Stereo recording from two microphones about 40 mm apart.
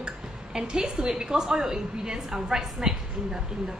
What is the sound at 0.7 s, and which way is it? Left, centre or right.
A woman's voice, right.